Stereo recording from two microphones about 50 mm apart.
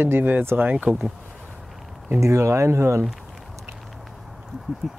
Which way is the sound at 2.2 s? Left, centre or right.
Right.